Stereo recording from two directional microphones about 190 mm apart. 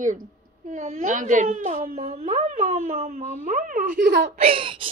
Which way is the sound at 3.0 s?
45° right (ahead or behind).